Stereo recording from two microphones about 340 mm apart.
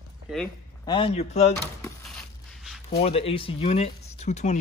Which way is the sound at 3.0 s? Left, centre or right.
Centre.